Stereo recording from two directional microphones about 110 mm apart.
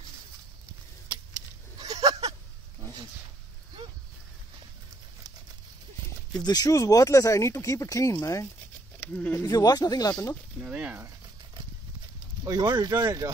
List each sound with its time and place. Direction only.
1.0 s vehicle: 40° right (ahead or behind)
2.8 s a sound: 40° right (ahead or behind)
6.4 s speech: 35° left (ahead or behind)
9.1 s speech: 15° left (ahead or behind)
9.5 s speech: 35° left (ahead or behind)
10.6 s speech: 5° right (ahead or behind)
12.4 s speech: 35° right (ahead or behind)